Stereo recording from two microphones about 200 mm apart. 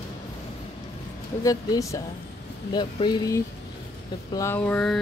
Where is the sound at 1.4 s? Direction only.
15° left (ahead or behind).